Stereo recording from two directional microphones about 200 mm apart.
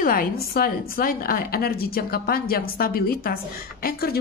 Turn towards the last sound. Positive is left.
turn(degrees=50)  # may be behind; listen again after turning